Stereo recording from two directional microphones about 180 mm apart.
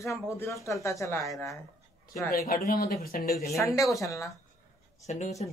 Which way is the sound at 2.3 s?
55° left (ahead or behind).